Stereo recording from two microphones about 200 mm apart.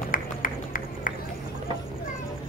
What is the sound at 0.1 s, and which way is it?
Music, 45° left (ahead or behind).